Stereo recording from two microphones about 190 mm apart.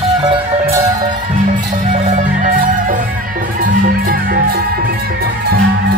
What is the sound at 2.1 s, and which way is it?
Music, 40° right (ahead or behind).